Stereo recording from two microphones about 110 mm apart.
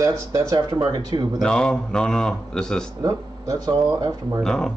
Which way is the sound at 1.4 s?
5° left (ahead or behind).